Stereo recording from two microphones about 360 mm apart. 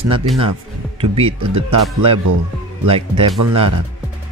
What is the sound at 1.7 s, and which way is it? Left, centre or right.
Speech, right.